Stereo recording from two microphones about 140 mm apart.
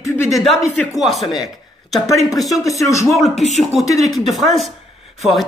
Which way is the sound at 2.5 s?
25° left (ahead or behind).